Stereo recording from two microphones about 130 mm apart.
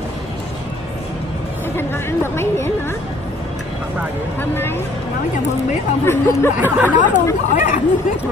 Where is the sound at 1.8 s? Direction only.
20° left (ahead or behind).